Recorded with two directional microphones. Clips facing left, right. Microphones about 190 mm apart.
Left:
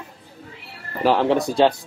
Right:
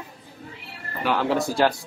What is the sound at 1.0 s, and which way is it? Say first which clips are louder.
Speech: left 5 dB; 25° left (ahead or behind).